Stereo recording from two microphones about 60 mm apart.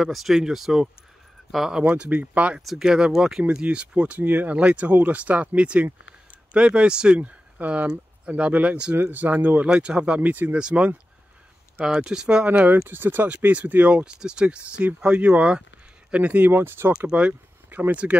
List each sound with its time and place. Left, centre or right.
0.0 s speech: centre
1.8 s speech: centre
2.6 s speech: centre
3.4 s speech: centre
8.9 s speech: right
9.7 s speech: centre
12.5 s speech: right
12.8 s speech: right
16.4 s speech: right
17.1 s speech: right
17.6 s a sound: right